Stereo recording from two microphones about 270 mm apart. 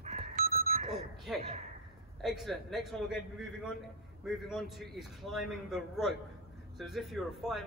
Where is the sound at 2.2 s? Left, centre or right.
Centre.